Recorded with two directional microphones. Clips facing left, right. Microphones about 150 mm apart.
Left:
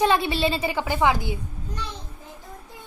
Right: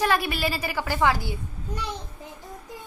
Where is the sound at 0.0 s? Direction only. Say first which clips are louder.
Left 3 dB; 25° left (ahead or behind).